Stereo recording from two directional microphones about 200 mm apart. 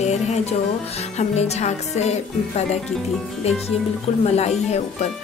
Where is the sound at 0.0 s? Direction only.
35° left (ahead or behind).